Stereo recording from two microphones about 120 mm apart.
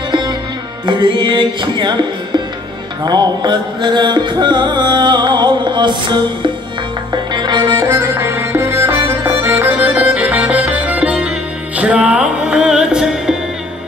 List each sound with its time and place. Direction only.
0.1 s music: 40° right (ahead or behind)
7.8 s music: 20° right (ahead or behind); by 13.4 s 5° right (ahead or behind)